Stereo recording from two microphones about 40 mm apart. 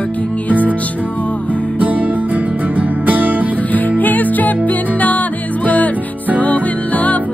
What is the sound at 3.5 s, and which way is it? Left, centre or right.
Music, left.